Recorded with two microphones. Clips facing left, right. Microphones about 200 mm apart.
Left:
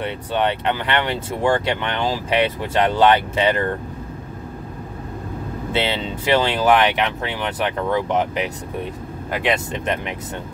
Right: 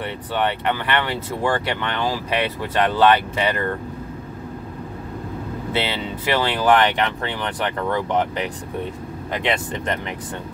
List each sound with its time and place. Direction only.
0.0 s speech: 20° left (ahead or behind)
5.8 s speech: 20° left (ahead or behind)
6.6 s speech: 10° left (ahead or behind)
9.7 s speech: 20° left (ahead or behind)